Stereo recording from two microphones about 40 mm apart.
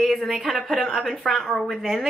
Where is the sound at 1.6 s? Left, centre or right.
Centre.